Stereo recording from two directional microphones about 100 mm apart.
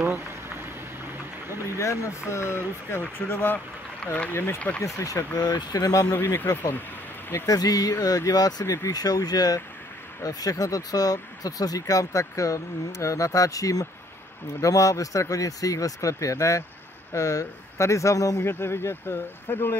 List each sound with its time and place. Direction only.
0.0 s a sound: 20° right (ahead or behind)
1.8 s speech: 30° left (ahead or behind); by 4.8 s 15° left (ahead or behind)
4.8 s speech: 30° left (ahead or behind)
6.1 s speech: 20° left (ahead or behind)
7.4 s speech: 35° left (ahead or behind); by 19.8 s 20° left (ahead or behind)